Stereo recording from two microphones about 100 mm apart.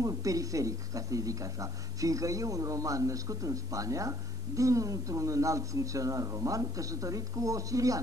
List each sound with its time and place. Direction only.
0.0 s speech: 35° right (ahead or behind)